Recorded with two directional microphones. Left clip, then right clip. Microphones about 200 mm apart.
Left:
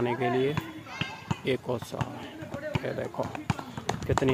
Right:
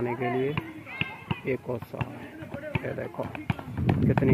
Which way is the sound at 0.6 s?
35° left (ahead or behind).